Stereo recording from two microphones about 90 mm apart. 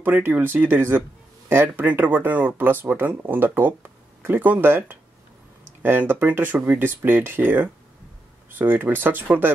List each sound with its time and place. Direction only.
0.0 s speech: 20° right (ahead or behind)